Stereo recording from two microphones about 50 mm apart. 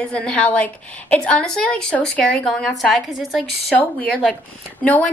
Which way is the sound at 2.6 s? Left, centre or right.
Centre.